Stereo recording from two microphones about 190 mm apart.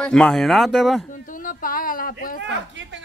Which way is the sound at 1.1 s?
45° left (ahead or behind).